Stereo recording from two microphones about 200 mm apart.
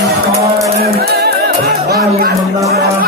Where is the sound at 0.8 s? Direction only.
50° right (ahead or behind).